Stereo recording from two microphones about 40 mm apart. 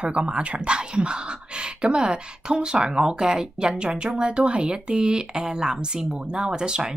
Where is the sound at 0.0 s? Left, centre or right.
Right.